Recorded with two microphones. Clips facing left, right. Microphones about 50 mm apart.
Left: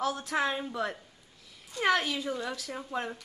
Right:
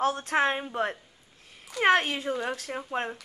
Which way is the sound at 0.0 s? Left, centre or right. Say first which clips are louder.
Right 5 dB; right.